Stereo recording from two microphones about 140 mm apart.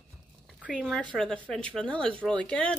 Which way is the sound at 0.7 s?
5° left (ahead or behind).